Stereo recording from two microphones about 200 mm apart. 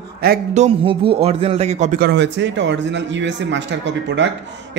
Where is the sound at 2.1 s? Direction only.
60° right (ahead or behind).